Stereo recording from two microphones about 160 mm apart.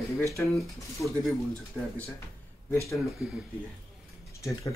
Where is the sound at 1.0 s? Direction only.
20° left (ahead or behind).